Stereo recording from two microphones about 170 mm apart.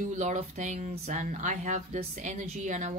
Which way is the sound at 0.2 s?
45° right (ahead or behind).